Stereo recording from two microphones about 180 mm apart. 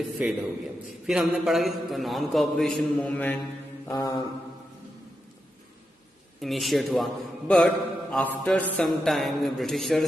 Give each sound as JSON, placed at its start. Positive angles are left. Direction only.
{"t": 0.2, "sound": "a man's voice", "side_deg": -5}
{"t": 3.8, "sound": "mantra", "side_deg": 20}
{"t": 6.4, "sound": "a man's voice", "side_deg": 0}